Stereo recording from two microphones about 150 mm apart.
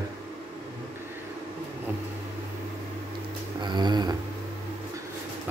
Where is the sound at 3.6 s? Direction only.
30° right (ahead or behind).